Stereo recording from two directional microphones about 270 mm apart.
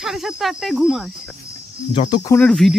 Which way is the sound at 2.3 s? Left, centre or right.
Centre.